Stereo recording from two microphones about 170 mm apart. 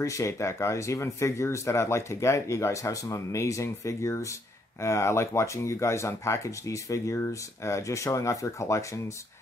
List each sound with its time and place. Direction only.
0.0 s speech: 20° left (ahead or behind)